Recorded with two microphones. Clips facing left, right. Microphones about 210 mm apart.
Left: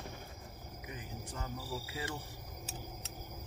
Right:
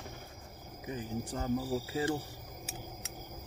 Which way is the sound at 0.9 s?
35° right (ahead or behind).